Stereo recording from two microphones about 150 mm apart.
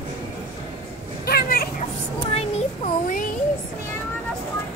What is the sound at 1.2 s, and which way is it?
Vehicle, 90° left.